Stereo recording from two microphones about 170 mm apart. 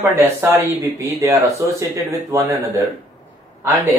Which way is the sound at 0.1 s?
15° right (ahead or behind).